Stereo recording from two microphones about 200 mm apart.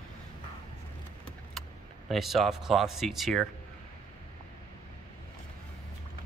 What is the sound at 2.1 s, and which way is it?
Speech, centre (ahead or behind).